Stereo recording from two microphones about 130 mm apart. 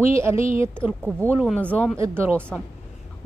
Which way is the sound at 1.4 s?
5° left (ahead or behind).